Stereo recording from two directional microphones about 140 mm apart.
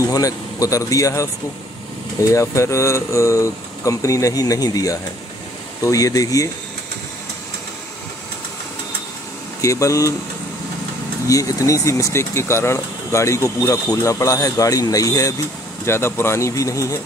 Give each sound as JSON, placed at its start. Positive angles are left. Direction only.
{"t": 0.0, "sound": "speech", "side_deg": 25}
{"t": 9.6, "sound": "speech", "side_deg": 20}
{"t": 11.2, "sound": "speech", "side_deg": 25}